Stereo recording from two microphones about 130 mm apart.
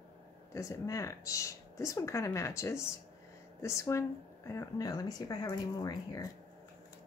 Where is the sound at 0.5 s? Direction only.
25° left (ahead or behind).